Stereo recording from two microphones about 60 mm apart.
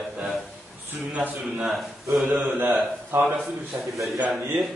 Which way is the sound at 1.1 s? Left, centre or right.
Right.